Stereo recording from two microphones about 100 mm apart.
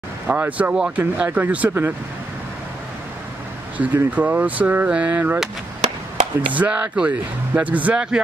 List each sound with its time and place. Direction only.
0.3 s speech: 15° right (ahead or behind)
3.7 s speech: 15° right (ahead or behind)
6.5 s speech: 15° right (ahead or behind)